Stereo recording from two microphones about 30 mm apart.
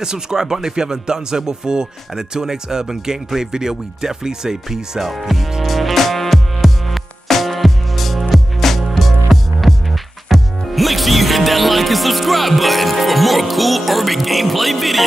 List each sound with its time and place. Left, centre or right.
0.0 s speech: right
5.6 s music: centre